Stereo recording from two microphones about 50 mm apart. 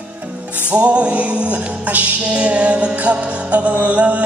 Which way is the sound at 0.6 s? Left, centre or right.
Right.